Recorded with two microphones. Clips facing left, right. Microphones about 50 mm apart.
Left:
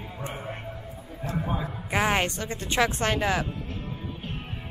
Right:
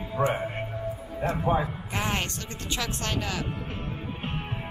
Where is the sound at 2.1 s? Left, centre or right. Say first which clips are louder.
Left 5 dB; centre.